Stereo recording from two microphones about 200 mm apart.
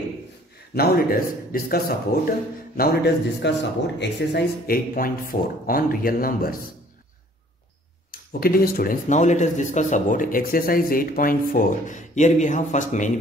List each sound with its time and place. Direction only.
0.7 s speech: 50° left (ahead or behind)
8.1 s speech: 50° left (ahead or behind)